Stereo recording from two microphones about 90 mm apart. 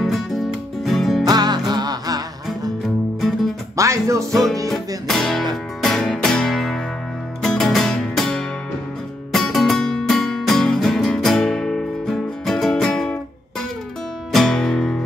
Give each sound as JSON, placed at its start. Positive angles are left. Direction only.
{"t": 0.0, "sound": "music", "side_deg": 0}
{"t": 1.2, "sound": "music", "side_deg": -50}
{"t": 3.2, "sound": "music", "side_deg": 5}
{"t": 3.7, "sound": "music", "side_deg": -35}
{"t": 4.3, "sound": "music", "side_deg": 5}
{"t": 14.3, "sound": "music", "side_deg": 5}